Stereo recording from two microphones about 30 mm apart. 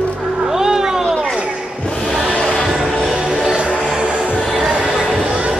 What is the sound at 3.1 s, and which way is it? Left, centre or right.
Music, right.